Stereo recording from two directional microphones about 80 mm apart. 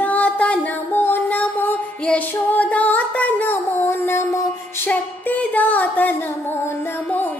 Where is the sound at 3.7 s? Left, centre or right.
Left.